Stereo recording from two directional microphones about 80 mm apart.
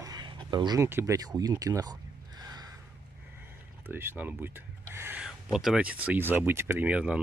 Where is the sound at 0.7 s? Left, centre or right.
Right.